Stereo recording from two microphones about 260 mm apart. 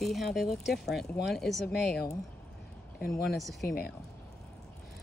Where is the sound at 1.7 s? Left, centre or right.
Left.